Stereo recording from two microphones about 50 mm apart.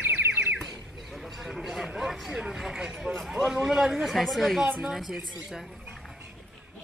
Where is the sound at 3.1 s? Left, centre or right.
Centre.